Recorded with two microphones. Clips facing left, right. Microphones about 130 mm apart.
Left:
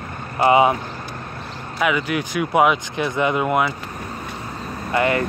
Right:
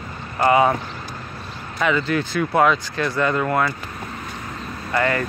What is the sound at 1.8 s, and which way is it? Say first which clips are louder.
Speech: even; 10° left (ahead or behind).